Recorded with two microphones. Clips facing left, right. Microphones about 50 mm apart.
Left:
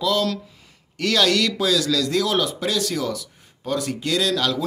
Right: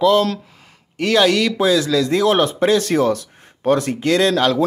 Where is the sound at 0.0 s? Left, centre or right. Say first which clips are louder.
Right 7 dB; right.